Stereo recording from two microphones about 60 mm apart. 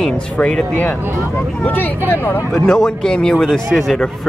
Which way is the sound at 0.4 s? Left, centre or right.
Centre.